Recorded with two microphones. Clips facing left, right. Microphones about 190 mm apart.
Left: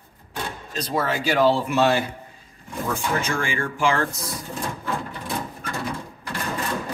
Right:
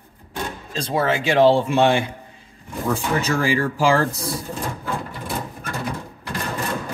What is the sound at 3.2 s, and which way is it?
Speech, 35° right (ahead or behind).